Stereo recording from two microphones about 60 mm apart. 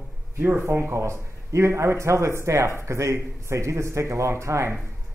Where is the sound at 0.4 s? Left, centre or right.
Right.